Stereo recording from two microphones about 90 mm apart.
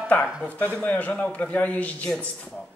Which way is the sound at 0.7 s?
15° left (ahead or behind).